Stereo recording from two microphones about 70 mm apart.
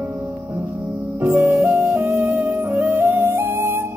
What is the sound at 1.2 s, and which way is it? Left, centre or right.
Music, right.